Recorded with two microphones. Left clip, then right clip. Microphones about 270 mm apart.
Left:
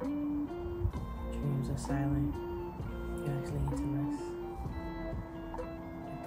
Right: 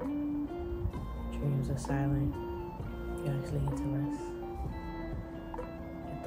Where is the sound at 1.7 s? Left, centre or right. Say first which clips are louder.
Right 1 dB; centre.